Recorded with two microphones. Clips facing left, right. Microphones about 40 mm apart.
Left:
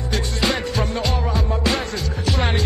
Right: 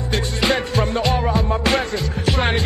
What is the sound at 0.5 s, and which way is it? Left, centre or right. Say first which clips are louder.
Music: right 5 dB; right.